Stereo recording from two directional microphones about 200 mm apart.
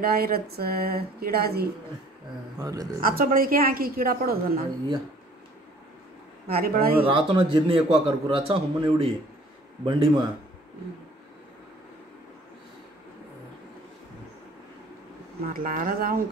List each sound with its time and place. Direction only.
0.0 s speech: 50° right (ahead or behind)
2.6 s a woman's voice: 15° right (ahead or behind)
3.0 s speech: 45° right (ahead or behind)
6.4 s speech: 50° right (ahead or behind)
7.1 s a man's voice: 25° right (ahead or behind)
15.4 s speech: 45° right (ahead or behind)